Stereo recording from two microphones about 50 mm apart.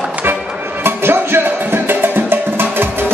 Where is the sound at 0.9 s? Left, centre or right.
Right.